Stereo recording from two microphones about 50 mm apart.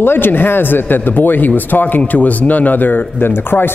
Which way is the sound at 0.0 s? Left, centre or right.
Left.